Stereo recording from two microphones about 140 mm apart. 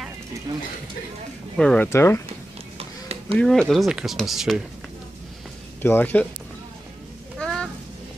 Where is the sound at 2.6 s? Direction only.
45° right (ahead or behind).